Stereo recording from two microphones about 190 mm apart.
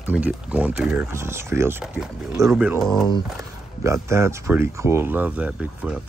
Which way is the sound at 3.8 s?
15° right (ahead or behind).